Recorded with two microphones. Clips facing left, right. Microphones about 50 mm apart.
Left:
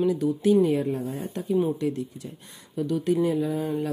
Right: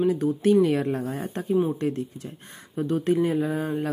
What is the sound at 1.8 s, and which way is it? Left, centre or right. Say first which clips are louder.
Speech: right 1 dB; right.